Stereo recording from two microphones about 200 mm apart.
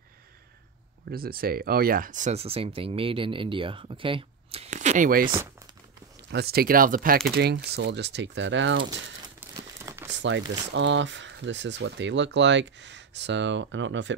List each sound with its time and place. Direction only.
1.1 s speech: 50° right (ahead or behind)
6.3 s speech: 50° right (ahead or behind)
7.2 s speech: 55° right (ahead or behind)
9.4 s crumpling: 15° right (ahead or behind)
10.1 s crumpling: 65° right (ahead or behind)
10.7 s speech: 65° right (ahead or behind)